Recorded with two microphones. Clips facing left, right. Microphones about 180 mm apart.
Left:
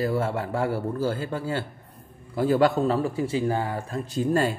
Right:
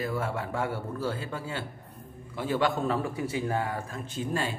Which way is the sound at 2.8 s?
30° left (ahead or behind).